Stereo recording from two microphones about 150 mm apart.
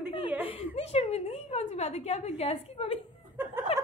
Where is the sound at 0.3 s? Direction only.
10° right (ahead or behind).